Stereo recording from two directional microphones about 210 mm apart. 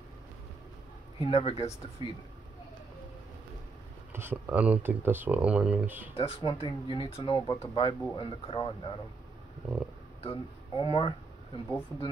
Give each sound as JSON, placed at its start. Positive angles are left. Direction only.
{"t": 1.2, "sound": "speech", "side_deg": 30}
{"t": 2.0, "sound": "speech", "side_deg": -20}
{"t": 4.1, "sound": "speech", "side_deg": -10}
{"t": 6.1, "sound": "speech", "side_deg": 25}
{"t": 10.2, "sound": "speech", "side_deg": 25}